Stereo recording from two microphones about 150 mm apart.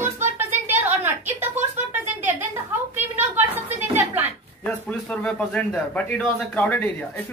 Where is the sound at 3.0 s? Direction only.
15° right (ahead or behind).